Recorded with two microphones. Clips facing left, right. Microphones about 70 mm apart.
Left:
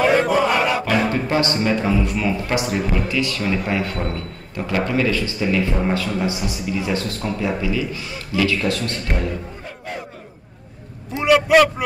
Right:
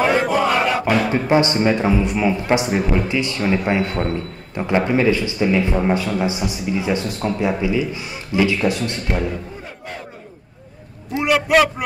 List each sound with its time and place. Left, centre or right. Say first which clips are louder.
0.3 s chant: even; centre
0.8 s a man's voice: right 2 dB; centre
11.1 s a sound: left 2 dB; centre